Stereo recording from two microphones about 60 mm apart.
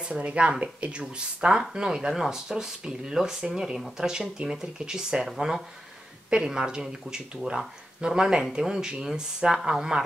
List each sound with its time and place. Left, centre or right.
0.1 s speech: right